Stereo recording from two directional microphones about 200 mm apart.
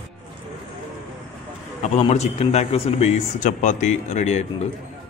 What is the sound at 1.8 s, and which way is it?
A man's voice, 30° left (ahead or behind).